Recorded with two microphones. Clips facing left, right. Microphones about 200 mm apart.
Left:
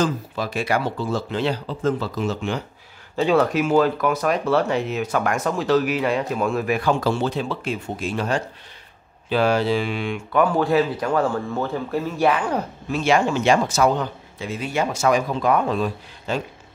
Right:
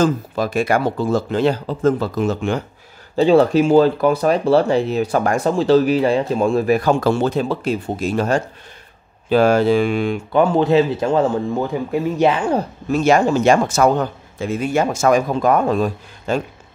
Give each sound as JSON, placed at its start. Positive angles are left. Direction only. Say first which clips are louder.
{"t": 0.0, "sound": "a man's voice", "louder": "right 5 dB", "side_deg": -45}
{"t": 3.2, "sound": "a man's voice", "louder": "right 6 dB", "side_deg": -30}
{"t": 10.3, "sound": "speech", "louder": "right 4 dB", "side_deg": -25}
{"t": 12.9, "sound": "a man's voice", "louder": "right 5 dB", "side_deg": -45}